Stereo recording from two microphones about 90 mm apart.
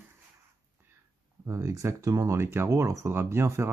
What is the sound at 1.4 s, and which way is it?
Speech, 35° right (ahead or behind).